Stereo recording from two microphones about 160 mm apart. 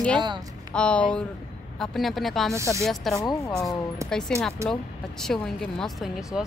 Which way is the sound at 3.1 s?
20° left (ahead or behind).